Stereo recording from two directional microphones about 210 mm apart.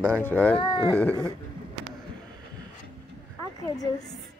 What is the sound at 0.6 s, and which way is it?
Speech, 20° left (ahead or behind).